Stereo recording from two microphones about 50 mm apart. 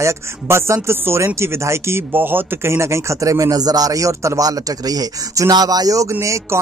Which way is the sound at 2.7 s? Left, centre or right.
Right.